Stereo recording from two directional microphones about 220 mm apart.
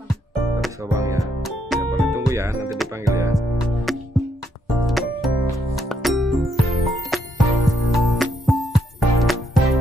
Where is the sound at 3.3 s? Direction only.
Centre (ahead or behind).